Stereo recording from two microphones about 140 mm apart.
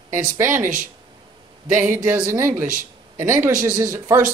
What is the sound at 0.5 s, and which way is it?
Speech, 70° right (ahead or behind).